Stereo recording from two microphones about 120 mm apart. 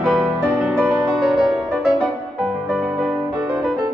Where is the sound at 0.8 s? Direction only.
10° right (ahead or behind).